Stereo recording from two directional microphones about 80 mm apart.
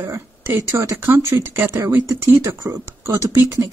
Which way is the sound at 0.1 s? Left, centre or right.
Right.